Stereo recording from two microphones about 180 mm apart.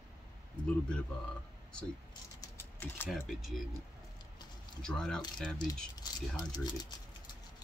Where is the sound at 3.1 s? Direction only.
Centre (ahead or behind).